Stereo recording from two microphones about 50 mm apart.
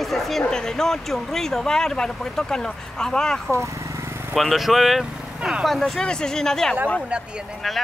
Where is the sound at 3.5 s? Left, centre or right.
Right.